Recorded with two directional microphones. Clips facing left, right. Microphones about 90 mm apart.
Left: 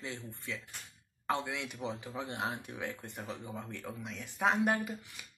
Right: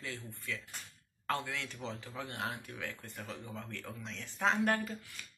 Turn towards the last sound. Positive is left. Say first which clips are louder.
# left 1 dB
turn(degrees=15)  # may be behind; listen again after turning